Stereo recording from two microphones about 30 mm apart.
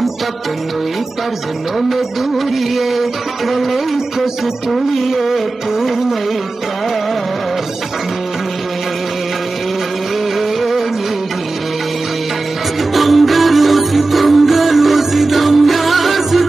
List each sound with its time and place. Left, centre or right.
1.8 s music: centre
12.9 s music: centre